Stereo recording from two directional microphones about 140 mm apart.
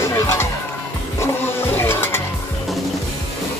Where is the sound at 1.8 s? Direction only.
15° left (ahead or behind).